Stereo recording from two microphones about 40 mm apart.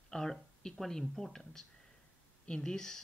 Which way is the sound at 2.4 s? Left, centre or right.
Centre.